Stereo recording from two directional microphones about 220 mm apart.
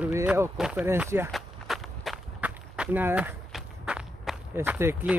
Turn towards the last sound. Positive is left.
turn(degrees=-10)  # may be behind; listen again after turning